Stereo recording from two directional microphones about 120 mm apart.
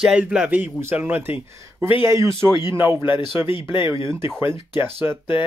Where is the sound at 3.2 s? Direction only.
45° left (ahead or behind).